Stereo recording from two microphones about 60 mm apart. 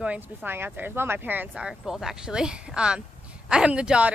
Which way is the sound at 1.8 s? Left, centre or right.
Centre.